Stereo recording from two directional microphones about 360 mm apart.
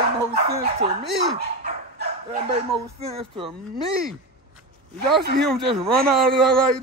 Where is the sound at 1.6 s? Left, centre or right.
Centre.